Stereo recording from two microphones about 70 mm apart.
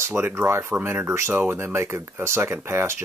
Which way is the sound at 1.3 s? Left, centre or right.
Right.